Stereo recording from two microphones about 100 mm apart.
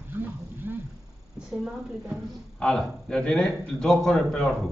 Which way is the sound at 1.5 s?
5° right (ahead or behind).